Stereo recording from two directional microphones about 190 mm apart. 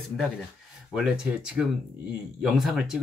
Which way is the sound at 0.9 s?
5° right (ahead or behind).